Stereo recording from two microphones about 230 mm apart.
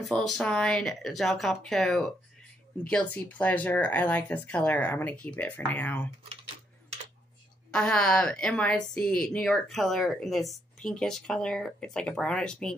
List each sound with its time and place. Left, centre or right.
0.3 s a woman's voice: centre
7.7 s a woman's voice: centre